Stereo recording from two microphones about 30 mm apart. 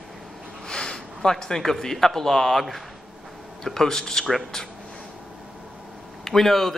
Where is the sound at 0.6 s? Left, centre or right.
Left.